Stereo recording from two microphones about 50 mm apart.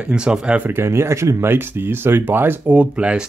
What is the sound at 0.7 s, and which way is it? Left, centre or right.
Speech, right.